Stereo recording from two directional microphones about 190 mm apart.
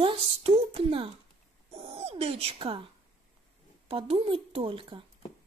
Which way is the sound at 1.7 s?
30° right (ahead or behind).